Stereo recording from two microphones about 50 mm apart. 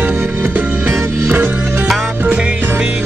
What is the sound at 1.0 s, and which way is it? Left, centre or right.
Music, right.